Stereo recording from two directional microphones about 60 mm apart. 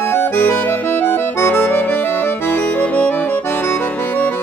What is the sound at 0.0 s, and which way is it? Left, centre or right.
Accordion, left.